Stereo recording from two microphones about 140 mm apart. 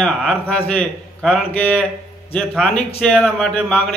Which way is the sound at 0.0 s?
Centre (ahead or behind).